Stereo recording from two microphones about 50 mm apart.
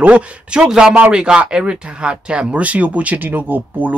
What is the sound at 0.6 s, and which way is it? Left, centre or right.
Speech, centre.